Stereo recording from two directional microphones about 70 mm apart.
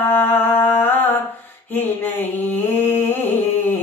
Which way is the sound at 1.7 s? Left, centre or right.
Left.